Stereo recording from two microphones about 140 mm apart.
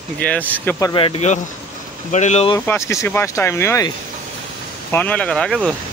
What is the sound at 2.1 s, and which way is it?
Speech, 55° left (ahead or behind).